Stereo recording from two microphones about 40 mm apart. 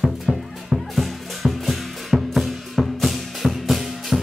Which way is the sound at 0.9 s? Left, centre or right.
Centre.